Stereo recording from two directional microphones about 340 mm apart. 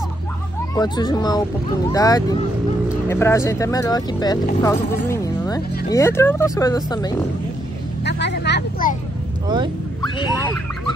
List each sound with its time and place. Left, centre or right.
0.7 s speech: centre
8.0 s vehicle: left
10.1 s speech: centre